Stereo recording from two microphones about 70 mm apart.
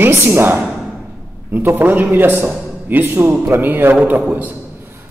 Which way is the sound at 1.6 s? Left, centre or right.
Right.